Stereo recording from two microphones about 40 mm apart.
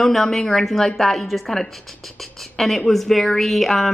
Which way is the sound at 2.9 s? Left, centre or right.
Centre.